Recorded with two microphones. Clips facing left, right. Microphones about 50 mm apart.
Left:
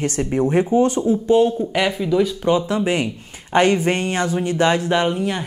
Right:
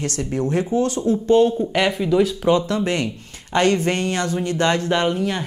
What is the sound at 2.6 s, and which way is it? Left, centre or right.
A woman's voice, centre.